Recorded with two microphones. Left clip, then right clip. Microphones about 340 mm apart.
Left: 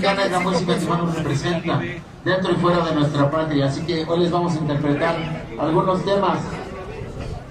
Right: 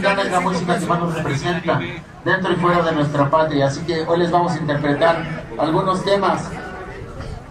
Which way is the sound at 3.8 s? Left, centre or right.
Right.